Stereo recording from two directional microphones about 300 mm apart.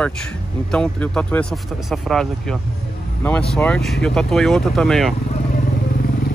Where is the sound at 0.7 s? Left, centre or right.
Centre.